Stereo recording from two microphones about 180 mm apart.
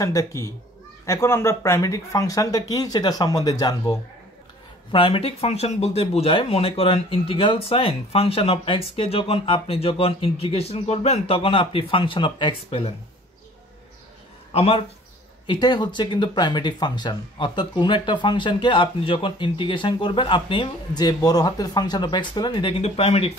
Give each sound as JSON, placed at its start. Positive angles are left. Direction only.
{"t": 0.0, "sound": "speech", "side_deg": 15}
{"t": 14.5, "sound": "speech", "side_deg": 35}